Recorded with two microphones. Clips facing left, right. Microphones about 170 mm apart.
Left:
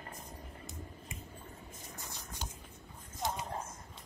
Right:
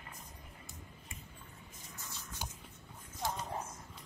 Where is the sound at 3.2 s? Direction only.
20° left (ahead or behind).